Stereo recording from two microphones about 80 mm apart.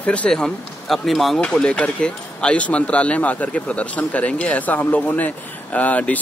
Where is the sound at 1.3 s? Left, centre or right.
Centre.